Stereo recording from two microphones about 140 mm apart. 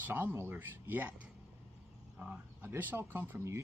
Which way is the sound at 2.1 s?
10° right (ahead or behind).